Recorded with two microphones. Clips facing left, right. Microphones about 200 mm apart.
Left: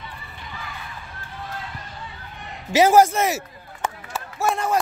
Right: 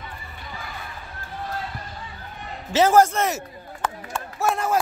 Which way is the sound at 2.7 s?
10° left (ahead or behind).